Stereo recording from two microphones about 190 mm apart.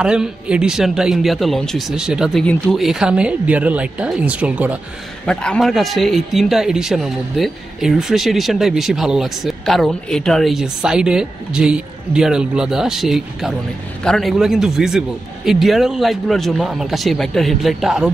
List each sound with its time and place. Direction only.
0.0 s a man's voice: 5° right (ahead or behind)
5.2 s a man's voice: 5° left (ahead or behind)